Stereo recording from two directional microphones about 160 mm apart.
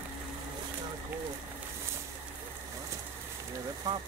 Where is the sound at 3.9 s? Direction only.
25° right (ahead or behind).